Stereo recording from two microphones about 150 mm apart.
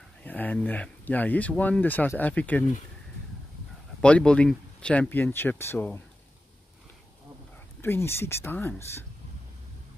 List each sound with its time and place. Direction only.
0.2 s speech: 10° left (ahead or behind)
4.0 s speech: 5° left (ahead or behind)
7.8 s speech: 15° left (ahead or behind)